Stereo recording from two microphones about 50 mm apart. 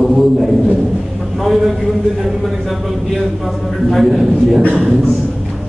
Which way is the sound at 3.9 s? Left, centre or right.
Centre.